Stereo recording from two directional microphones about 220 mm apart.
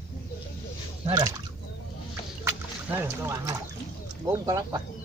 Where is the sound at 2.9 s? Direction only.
10° right (ahead or behind).